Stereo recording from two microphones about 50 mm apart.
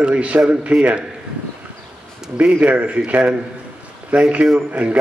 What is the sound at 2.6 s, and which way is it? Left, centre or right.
A man's voice, right.